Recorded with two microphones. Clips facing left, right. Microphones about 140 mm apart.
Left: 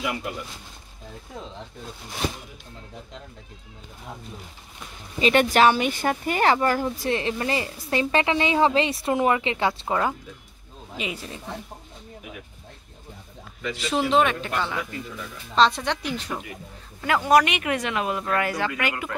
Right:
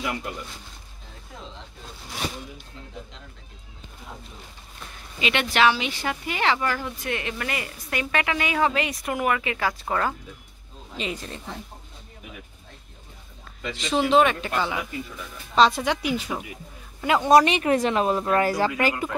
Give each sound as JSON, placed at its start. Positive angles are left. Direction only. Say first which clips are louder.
{"t": 0.0, "sound": "speech", "louder": "left 1 dB", "side_deg": 5}
{"t": 5.2, "sound": "speech", "louder": "left 4 dB", "side_deg": 40}
{"t": 11.0, "sound": "speech", "louder": "right 1 dB", "side_deg": 10}
{"t": 13.7, "sound": "speech", "louder": "right 2 dB", "side_deg": 5}
{"t": 17.0, "sound": "speech", "louder": "right 2 dB", "side_deg": -20}